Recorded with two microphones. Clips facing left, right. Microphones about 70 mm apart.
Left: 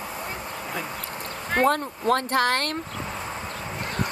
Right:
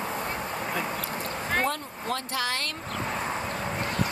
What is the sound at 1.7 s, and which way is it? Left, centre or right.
Speech, left.